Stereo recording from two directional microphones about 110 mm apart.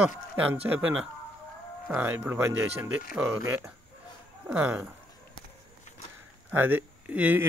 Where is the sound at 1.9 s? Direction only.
20° right (ahead or behind).